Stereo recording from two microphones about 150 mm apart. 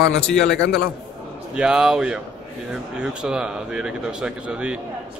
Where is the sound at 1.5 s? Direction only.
5° right (ahead or behind).